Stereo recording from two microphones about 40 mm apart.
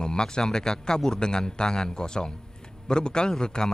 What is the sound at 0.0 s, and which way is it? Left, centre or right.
Speech, centre.